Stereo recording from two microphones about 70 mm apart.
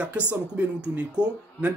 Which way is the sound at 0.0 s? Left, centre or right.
Centre.